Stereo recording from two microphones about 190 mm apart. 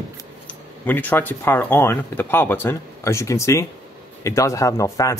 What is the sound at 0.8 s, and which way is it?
Speech, 10° left (ahead or behind).